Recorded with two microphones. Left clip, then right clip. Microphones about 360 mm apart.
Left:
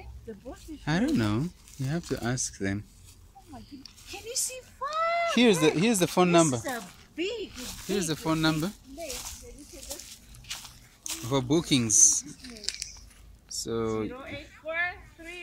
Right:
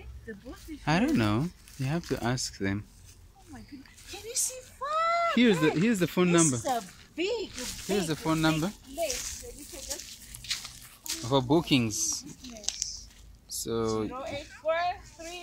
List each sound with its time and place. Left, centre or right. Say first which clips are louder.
0.8 s speech: right 1 dB; centre
3.8 s speech: left 1 dB; centre
6.6 s speech: right 4 dB; centre
7.9 s speech: even; centre
10.4 s crunch: right 5 dB; centre
11.2 s speech: right 1 dB; centre
13.6 s speech: even; centre
14.2 s a sound: right 6 dB; right